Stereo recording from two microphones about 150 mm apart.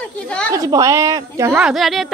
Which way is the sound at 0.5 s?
20° right (ahead or behind).